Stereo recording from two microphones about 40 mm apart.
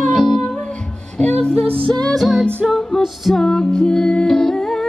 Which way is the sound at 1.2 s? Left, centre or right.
Left.